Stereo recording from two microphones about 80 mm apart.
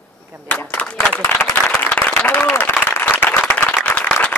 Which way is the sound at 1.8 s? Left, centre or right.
Left.